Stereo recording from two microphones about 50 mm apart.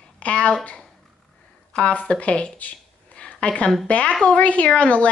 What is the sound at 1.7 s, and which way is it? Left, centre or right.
A woman's voice, centre.